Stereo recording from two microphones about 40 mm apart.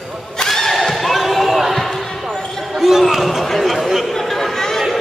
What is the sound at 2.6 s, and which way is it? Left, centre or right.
Basketball bounce, centre.